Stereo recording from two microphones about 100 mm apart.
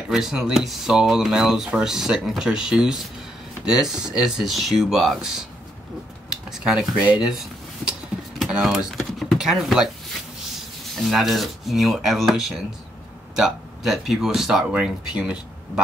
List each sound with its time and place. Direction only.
0.1 s speech: 5° right (ahead or behind)
6.5 s speech: 5° right (ahead or behind)
8.4 s power windows: 5° right (ahead or behind)
11.1 s speech: centre (ahead or behind)